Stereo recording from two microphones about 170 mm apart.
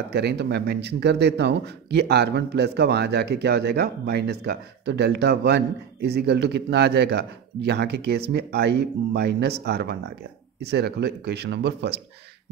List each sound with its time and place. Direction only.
0.1 s speech: 75° right (ahead or behind)